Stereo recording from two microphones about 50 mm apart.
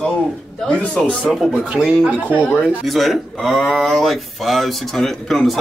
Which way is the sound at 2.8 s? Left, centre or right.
Centre.